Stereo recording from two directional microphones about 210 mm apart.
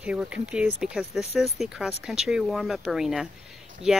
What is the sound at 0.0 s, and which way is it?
Speech, 5° right (ahead or behind).